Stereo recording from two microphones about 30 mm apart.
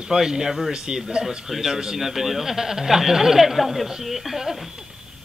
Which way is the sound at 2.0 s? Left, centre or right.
Centre.